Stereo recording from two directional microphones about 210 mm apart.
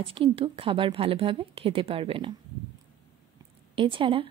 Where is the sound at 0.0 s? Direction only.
25° right (ahead or behind).